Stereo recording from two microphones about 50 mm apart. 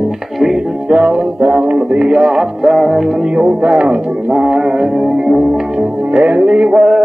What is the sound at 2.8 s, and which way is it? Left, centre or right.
Music, centre.